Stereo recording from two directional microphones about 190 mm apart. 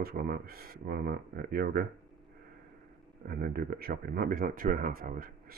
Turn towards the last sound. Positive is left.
turn(degrees=-50)  # may be behind; listen again after turning